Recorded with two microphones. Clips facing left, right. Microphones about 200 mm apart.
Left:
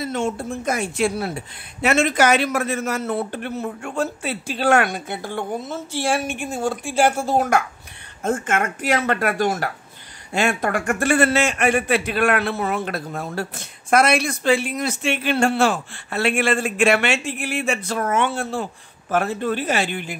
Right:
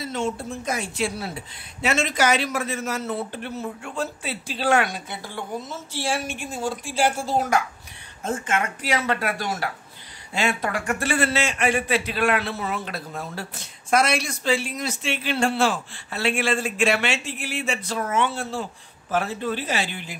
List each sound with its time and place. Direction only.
0.0 s speech: 50° left (ahead or behind)